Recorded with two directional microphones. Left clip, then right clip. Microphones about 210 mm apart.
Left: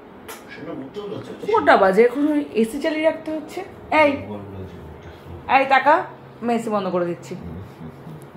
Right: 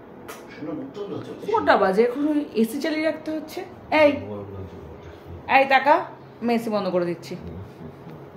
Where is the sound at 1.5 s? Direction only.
25° left (ahead or behind).